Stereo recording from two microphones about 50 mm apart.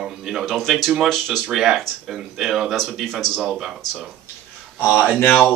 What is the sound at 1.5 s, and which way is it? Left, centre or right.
Speech, centre.